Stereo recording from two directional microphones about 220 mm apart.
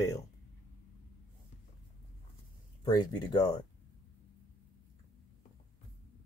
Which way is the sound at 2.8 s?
20° left (ahead or behind).